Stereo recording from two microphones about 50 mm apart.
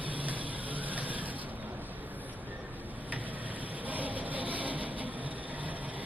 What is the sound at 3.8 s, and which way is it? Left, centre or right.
Vehicle, right.